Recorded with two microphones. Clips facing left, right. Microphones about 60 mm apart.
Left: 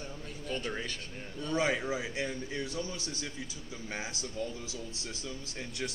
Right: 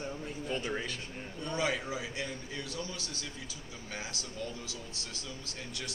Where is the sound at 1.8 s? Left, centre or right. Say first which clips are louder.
Left 3 dB; left.